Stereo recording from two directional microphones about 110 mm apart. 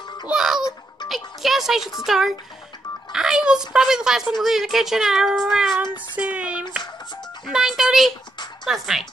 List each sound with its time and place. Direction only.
0.3 s music: 5° right (ahead or behind)
3.1 s speech: 5° right (ahead or behind)
5.8 s child singing: 15° right (ahead or behind)
7.4 s speech: 5° right (ahead or behind)